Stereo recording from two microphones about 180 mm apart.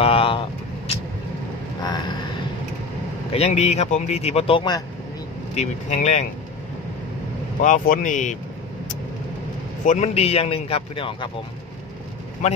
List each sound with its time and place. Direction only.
0.0 s vehicle: 30° left (ahead or behind)
1.8 s a sound: 25° left (ahead or behind)
3.3 s speech: 35° left (ahead or behind)
5.5 s speech: 40° left (ahead or behind)
7.6 s speech: 45° left (ahead or behind)
9.8 s speech: 40° left (ahead or behind)
12.4 s speech: 40° left (ahead or behind)